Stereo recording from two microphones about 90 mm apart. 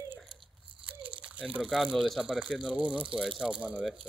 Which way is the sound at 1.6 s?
5° right (ahead or behind).